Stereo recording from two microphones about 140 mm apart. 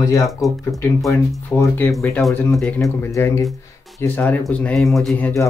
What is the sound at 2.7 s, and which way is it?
Speech, 20° left (ahead or behind).